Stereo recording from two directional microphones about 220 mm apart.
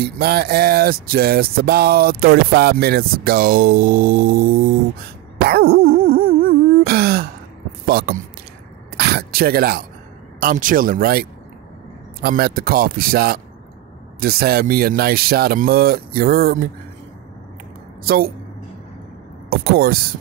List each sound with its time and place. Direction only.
0.0 s speech: 45° right (ahead or behind)
5.4 s throat clearing: 45° right (ahead or behind)
7.8 s a sound: 45° right (ahead or behind)
8.9 s speech: 45° right (ahead or behind)
18.0 s speech: 45° right (ahead or behind)
19.5 s speech: 45° right (ahead or behind)